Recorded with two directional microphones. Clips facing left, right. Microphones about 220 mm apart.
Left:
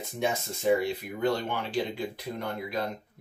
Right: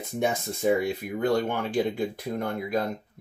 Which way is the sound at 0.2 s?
50° right (ahead or behind).